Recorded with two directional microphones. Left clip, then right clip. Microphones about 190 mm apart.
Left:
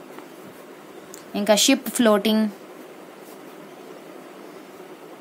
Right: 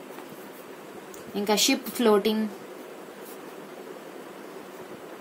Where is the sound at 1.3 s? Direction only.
45° left (ahead or behind).